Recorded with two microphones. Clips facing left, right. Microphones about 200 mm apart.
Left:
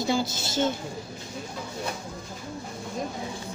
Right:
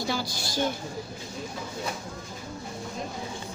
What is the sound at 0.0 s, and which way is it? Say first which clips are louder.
Speech: left 4 dB; 20° left (ahead or behind).